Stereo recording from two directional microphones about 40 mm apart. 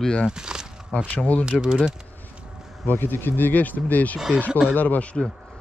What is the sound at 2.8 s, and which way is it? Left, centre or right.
Speech, left.